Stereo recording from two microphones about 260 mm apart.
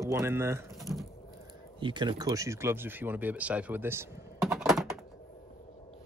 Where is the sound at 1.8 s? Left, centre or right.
Centre.